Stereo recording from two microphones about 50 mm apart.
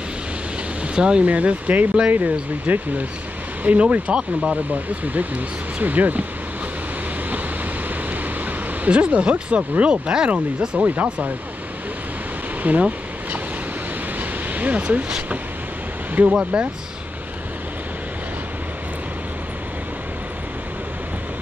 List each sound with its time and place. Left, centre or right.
0.9 s speech: centre
1.2 s speech: right
5.0 s speech: right
8.8 s speech: right
12.6 s a sound: right
14.5 s speech: right
16.2 s speech: right